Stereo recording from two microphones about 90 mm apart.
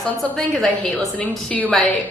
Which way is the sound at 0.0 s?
10° left (ahead or behind).